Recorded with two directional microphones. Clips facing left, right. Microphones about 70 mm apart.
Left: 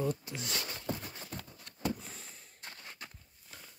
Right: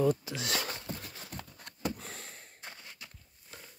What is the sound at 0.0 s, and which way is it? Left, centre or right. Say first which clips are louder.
Speech: right 6 dB; right.